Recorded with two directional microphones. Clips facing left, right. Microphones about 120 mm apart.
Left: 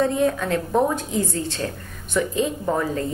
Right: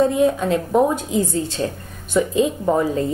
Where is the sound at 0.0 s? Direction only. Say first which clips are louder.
Right 4 dB; 10° right (ahead or behind).